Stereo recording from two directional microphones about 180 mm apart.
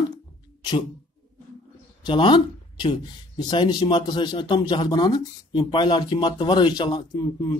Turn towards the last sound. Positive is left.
turn(degrees=20)  # may be behind; listen again after turning